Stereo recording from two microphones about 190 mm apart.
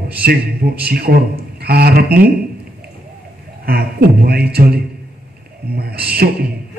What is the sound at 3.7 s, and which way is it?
A man's voice, 55° right (ahead or behind).